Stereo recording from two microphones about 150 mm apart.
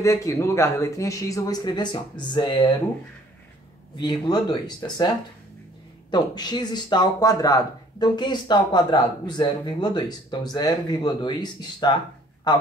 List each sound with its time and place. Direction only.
0.0 s speech: 20° left (ahead or behind)
3.9 s speech: 25° left (ahead or behind)